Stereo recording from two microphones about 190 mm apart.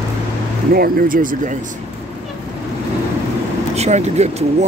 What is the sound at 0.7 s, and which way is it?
Speech, 50° right (ahead or behind).